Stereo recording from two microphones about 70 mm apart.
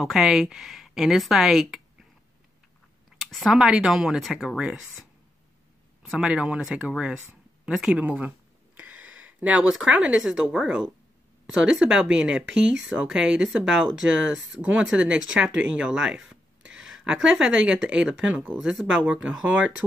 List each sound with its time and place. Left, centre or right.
0.0 s speech: centre
3.2 s speech: centre
6.1 s speech: centre
7.6 s speech: centre
7.9 s speech: right
8.7 s a sound: right
9.8 s speech: centre
14.3 s speech: centre
14.8 s speech: centre
18.3 s speech: right
18.6 s speech: centre
19.0 s speech: right